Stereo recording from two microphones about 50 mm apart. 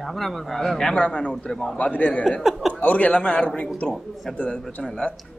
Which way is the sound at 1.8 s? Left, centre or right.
Left.